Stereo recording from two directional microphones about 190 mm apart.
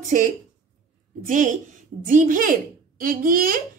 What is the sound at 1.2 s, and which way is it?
A woman's voice, 45° right (ahead or behind).